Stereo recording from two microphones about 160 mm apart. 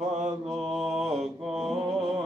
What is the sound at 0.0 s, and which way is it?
Mantra, 45° right (ahead or behind).